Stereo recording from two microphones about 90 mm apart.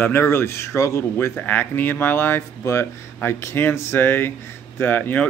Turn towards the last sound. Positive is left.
turn(degrees=20)  # may be behind; listen again after turning